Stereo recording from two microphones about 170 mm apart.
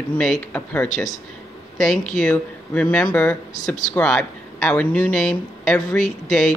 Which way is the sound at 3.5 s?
45° left (ahead or behind).